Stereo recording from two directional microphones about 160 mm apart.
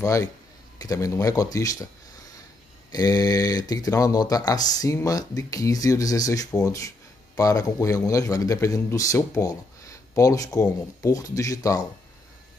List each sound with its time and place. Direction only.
0.0 s a man's voice: 20° left (ahead or behind)
2.9 s a man's voice: 25° left (ahead or behind)